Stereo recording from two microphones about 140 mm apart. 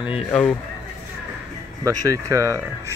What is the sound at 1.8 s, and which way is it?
Speech, 25° right (ahead or behind).